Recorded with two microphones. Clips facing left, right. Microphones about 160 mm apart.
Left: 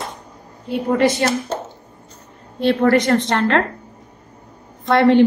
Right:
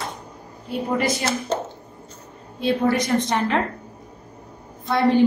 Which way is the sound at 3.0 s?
90° left.